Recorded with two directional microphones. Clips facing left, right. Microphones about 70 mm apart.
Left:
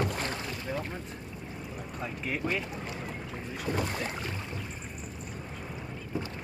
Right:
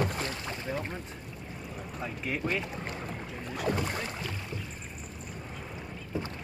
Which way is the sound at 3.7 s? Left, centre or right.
Right.